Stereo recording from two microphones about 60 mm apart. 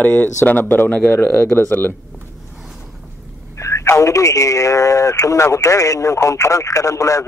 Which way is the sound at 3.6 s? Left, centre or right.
Left.